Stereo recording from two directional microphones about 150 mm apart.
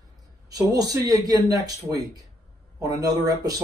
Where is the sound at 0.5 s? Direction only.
25° right (ahead or behind).